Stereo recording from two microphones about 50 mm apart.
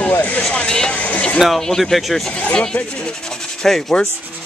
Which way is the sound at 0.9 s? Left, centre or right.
Left.